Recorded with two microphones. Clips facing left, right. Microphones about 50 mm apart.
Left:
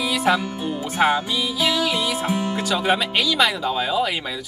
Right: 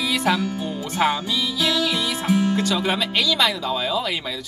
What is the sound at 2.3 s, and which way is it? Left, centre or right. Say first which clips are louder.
Speech: right 2 dB; centre.